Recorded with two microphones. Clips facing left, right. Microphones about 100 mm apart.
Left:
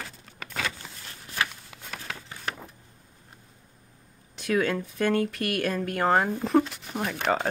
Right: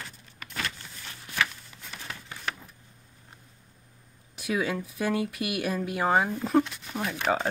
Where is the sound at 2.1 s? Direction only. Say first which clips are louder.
Left 3 dB; 90° left.